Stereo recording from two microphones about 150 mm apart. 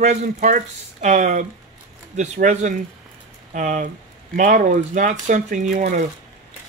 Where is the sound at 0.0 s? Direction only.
55° right (ahead or behind).